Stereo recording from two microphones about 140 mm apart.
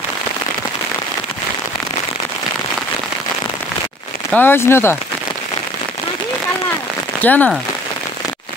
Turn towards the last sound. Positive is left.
turn(degrees=10)  # may be behind; listen again after turning